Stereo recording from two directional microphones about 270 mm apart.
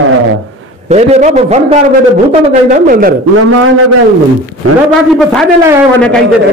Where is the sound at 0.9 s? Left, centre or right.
Right.